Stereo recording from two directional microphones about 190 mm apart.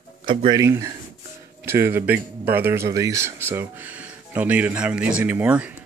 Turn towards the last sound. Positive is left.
turn(degrees=-5)  # may be behind; listen again after turning